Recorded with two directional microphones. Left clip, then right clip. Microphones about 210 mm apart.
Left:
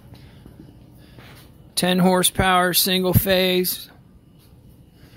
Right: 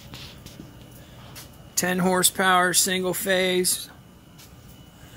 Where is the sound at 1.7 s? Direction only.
30° left (ahead or behind).